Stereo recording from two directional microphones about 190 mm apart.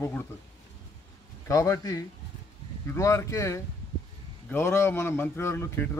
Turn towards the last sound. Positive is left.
turn(degrees=15)  # may be behind; listen again after turning